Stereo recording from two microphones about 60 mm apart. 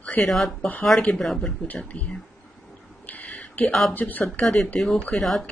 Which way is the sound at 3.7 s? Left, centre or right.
Centre.